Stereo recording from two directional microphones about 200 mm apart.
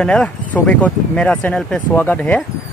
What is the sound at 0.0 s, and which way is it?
Speech, 5° left (ahead or behind).